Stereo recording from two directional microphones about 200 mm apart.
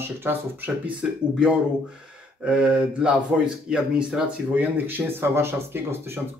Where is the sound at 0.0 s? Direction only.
10° right (ahead or behind).